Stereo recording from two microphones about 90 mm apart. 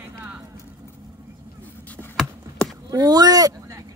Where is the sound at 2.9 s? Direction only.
45° right (ahead or behind).